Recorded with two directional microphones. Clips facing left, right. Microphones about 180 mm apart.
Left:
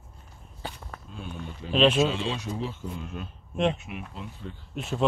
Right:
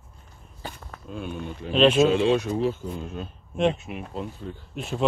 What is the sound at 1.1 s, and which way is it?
Speech, 65° right (ahead or behind).